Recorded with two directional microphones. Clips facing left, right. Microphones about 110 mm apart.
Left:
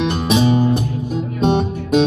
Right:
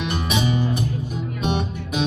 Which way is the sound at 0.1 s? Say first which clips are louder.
Left 7 dB; 35° left (ahead or behind).